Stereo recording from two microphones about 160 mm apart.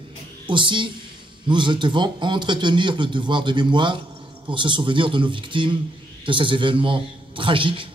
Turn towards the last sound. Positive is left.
turn(degrees=-30)  # may be behind; listen again after turning